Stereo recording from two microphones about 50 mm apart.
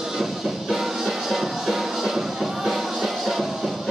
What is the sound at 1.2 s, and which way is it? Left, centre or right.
Music, centre.